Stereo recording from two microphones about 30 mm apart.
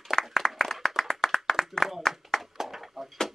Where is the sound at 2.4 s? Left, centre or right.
Centre.